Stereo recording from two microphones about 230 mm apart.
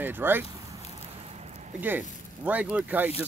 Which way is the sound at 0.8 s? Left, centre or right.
Right.